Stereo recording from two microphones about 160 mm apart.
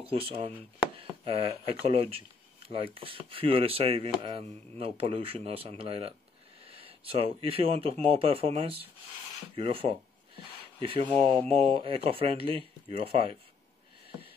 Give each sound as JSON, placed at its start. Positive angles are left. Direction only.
{"t": 0.0, "sound": "speech", "side_deg": -35}
{"t": 9.6, "sound": "a sound", "side_deg": -35}
{"t": 11.2, "sound": "speech", "side_deg": -35}